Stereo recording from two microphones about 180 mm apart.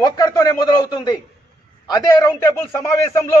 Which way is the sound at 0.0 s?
20° left (ahead or behind).